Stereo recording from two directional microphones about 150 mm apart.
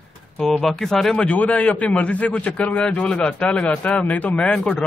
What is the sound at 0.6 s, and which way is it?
A man's voice, centre (ahead or behind).